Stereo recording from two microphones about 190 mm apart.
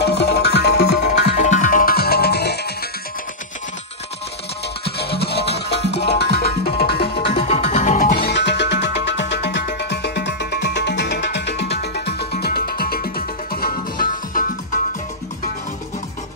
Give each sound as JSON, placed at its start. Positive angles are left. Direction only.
{"t": 0.0, "sound": "music", "side_deg": 60}
{"t": 1.4, "sound": "music", "side_deg": 40}
{"t": 4.9, "sound": "music", "side_deg": 55}
{"t": 7.3, "sound": "music", "side_deg": 35}
{"t": 8.2, "sound": "music", "side_deg": 65}